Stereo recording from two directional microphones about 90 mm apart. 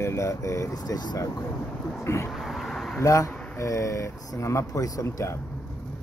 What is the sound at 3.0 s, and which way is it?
Speech, 35° left (ahead or behind).